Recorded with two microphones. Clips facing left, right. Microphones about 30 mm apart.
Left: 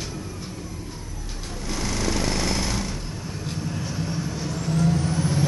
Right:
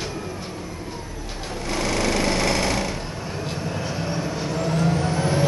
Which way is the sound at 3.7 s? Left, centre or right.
Right.